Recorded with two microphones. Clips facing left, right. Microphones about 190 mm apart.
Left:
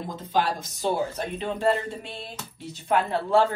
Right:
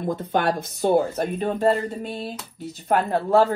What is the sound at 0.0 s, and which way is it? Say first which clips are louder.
A woman's voice: right 4 dB; 60° right (ahead or behind).